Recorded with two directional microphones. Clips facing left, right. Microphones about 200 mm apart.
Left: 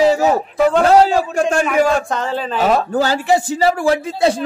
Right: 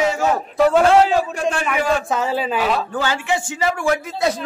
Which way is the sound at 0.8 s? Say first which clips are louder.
Left 2 dB; 40° left (ahead or behind).